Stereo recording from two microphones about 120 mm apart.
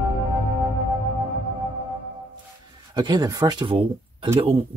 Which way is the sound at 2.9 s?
40° right (ahead or behind).